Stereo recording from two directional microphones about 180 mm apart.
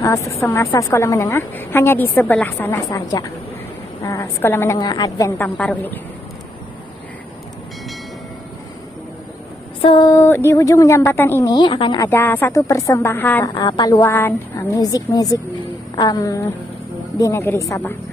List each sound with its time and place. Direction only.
0.0 s a woman's voice: 15° left (ahead or behind)
5.4 s a woman's voice: 10° left (ahead or behind)
9.8 s a woman's voice: 25° left (ahead or behind)
11.5 s a woman's voice: 25° left (ahead or behind)
12.1 s a woman's voice: 10° left (ahead or behind)
13.6 s a woman's voice: 20° left (ahead or behind)